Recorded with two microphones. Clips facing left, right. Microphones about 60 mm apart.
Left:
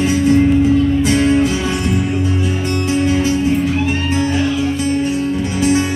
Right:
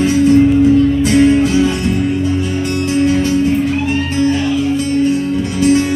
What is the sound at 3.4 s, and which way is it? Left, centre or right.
Music, centre.